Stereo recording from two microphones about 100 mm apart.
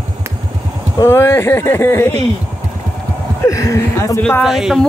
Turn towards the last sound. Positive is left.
turn(degrees=-5)  # may be behind; listen again after turning